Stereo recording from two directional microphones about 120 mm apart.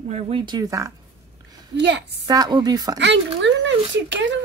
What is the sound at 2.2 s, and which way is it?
Speech, 35° right (ahead or behind).